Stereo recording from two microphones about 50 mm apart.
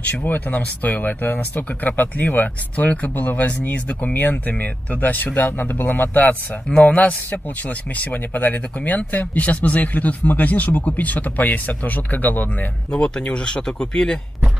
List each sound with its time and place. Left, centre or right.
0.2 s speech: left
12.9 s speech: left